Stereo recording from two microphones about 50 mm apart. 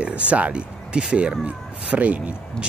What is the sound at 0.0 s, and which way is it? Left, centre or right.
Speech, right.